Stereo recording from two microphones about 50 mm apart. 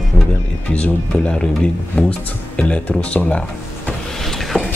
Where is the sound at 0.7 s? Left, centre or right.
Left.